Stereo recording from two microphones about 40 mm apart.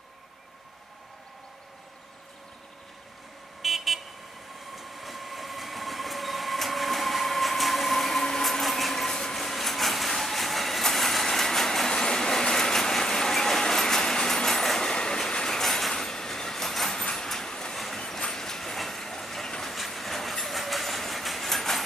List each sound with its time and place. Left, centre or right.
3.6 s vehicle: centre
4.7 s train: centre
17.0 s vehicle: centre
17.7 s train: centre